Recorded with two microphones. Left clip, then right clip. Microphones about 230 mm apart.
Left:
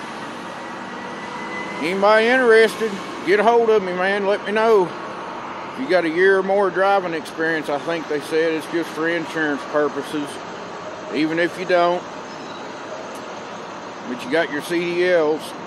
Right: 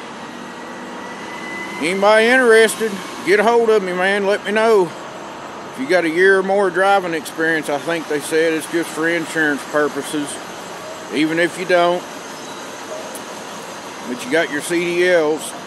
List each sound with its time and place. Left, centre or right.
1.8 s speech: centre
5.9 s speech: centre
11.1 s speech: centre
14.3 s speech: centre